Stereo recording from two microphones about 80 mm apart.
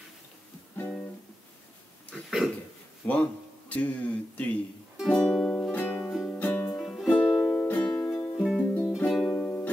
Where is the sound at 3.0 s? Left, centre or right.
Left.